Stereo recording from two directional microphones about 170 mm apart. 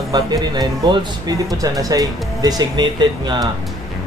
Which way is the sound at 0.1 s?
20° right (ahead or behind).